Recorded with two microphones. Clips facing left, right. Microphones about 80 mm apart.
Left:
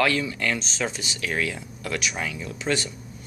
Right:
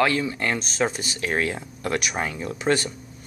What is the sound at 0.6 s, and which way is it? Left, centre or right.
Speech, right.